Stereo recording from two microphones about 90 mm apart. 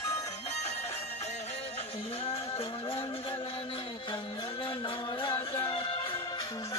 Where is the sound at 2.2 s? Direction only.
90° left.